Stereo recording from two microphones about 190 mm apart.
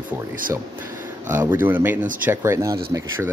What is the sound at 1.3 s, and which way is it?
Speech, 10° right (ahead or behind).